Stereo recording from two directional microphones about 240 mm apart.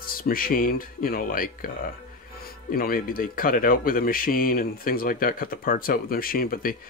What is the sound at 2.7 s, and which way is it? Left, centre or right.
Speech, left.